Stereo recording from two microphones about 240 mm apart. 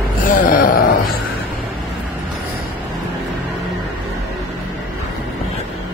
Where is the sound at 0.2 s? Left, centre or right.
Left.